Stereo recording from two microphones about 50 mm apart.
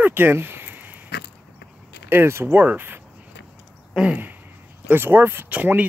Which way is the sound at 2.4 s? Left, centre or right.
Right.